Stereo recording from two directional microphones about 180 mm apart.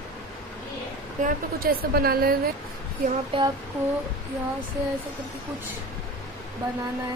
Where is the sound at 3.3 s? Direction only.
30° right (ahead or behind).